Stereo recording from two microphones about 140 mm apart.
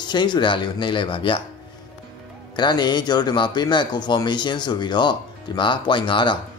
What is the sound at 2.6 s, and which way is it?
Speech, 30° left (ahead or behind).